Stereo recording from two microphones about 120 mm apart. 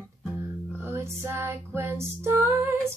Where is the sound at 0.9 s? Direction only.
20° right (ahead or behind).